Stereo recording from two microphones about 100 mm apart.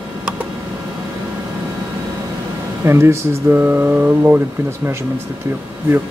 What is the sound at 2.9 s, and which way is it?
Speech, 25° right (ahead or behind).